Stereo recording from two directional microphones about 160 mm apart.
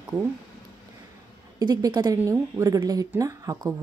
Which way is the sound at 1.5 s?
25° right (ahead or behind).